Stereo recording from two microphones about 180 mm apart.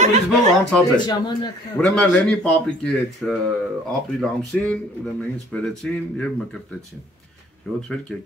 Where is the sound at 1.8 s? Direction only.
5° left (ahead or behind).